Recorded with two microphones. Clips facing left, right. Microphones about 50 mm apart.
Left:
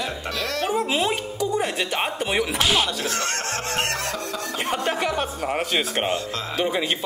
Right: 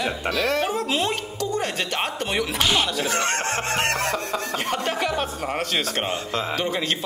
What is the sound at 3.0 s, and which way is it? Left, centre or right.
Speech, right.